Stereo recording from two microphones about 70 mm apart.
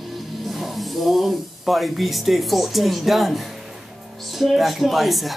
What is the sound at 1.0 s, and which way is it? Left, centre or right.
Speech, centre.